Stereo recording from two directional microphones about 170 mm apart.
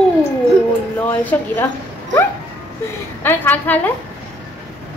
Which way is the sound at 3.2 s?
10° left (ahead or behind).